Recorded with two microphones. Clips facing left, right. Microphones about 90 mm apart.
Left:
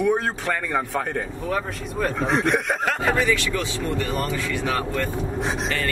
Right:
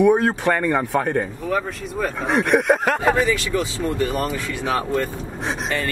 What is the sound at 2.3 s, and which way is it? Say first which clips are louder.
Speech: right 7 dB; 60° right (ahead or behind).